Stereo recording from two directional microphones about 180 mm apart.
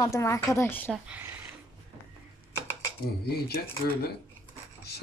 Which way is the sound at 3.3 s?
60° left (ahead or behind).